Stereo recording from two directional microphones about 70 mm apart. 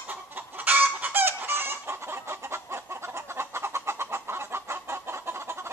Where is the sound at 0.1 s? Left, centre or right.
Right.